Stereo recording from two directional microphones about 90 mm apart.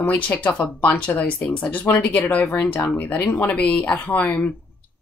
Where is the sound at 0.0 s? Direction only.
15° left (ahead or behind).